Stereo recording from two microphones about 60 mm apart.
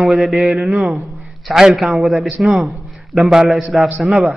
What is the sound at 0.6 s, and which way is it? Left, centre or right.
A man's voice, centre.